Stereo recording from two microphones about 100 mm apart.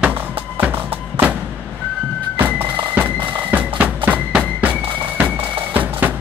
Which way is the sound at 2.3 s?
20° right (ahead or behind).